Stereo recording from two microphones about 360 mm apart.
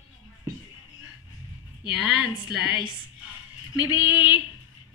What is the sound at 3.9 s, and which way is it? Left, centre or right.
Speech, centre.